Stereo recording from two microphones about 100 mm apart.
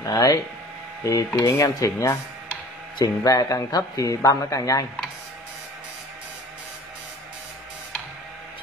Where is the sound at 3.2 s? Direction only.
35° left (ahead or behind).